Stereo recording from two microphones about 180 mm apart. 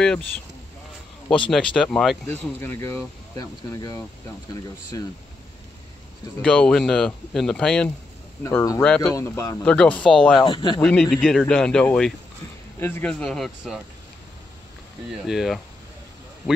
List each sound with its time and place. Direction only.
1.5 s speech: 5° left (ahead or behind)
6.4 s speech: 5° left (ahead or behind)
8.5 s speech: 15° left (ahead or behind)
10.4 s speech: 25° left (ahead or behind)
10.8 s speech: 5° left (ahead or behind)
15.2 s speech: centre (ahead or behind)